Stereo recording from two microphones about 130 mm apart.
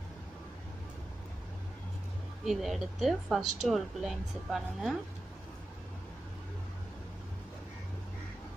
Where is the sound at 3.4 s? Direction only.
65° right (ahead or behind).